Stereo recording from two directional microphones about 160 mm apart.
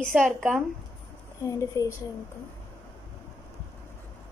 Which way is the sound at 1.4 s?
20° left (ahead or behind).